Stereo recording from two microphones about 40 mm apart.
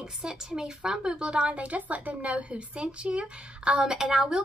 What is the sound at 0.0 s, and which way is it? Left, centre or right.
A woman's voice, centre.